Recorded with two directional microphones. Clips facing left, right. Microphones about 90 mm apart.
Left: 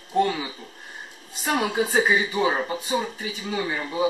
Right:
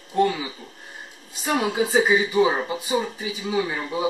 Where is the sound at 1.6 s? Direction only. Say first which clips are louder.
Right 2 dB; 5° right (ahead or behind).